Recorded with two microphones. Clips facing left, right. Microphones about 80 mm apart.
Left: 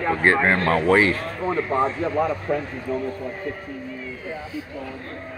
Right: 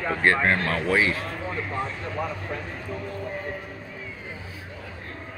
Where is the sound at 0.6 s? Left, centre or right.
Left.